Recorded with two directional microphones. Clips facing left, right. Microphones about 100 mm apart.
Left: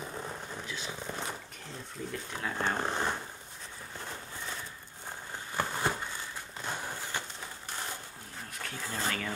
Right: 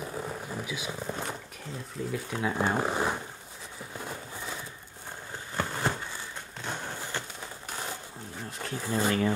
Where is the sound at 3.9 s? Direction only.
10° right (ahead or behind).